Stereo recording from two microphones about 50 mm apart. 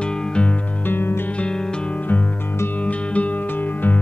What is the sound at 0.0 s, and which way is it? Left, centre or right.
Music, left.